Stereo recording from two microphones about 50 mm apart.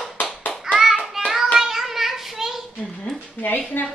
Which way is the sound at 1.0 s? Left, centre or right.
Centre.